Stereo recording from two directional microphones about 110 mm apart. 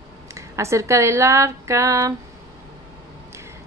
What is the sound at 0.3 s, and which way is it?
Speech, 25° right (ahead or behind).